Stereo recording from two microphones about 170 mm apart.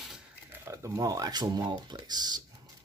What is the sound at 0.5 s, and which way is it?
Speech, 15° right (ahead or behind).